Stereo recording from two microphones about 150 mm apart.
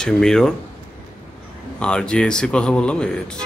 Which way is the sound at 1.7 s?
5° left (ahead or behind).